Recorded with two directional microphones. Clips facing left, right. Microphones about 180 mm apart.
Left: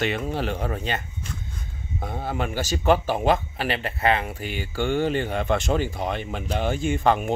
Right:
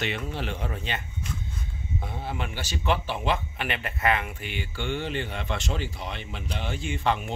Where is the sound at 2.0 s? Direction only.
45° left (ahead or behind).